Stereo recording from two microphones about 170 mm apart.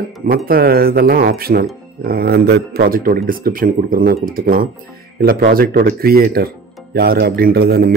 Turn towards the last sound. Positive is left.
turn(degrees=-65)  # may be behind; listen again after turning